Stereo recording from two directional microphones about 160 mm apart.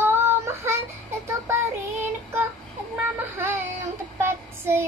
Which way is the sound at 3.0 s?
15° right (ahead or behind).